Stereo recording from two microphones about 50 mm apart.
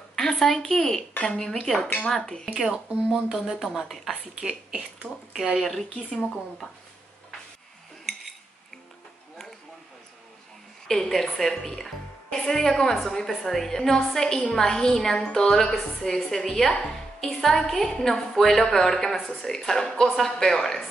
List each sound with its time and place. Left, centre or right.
0.1 s a woman's voice: centre
2.7 s speech: centre
4.4 s speech: centre
5.3 s speech: centre
5.6 s a woman's voice: centre
10.9 s a woman's voice: centre